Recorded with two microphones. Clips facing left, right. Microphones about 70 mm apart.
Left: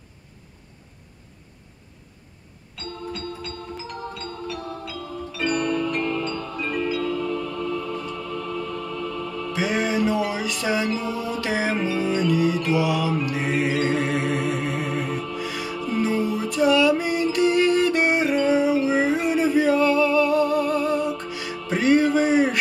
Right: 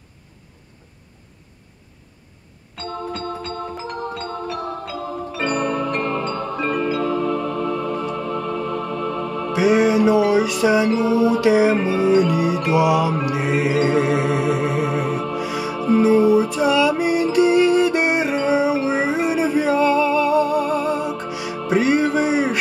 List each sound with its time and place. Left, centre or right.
2.7 s music: right
9.5 s music: centre
13.3 s mantra: centre
13.8 s music: centre